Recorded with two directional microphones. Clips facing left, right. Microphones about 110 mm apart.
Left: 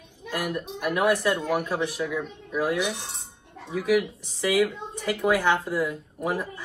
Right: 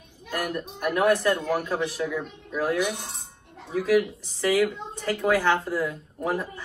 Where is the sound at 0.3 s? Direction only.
10° left (ahead or behind).